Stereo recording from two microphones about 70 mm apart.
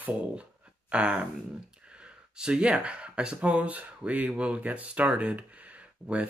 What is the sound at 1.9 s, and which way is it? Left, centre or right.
Speech, centre.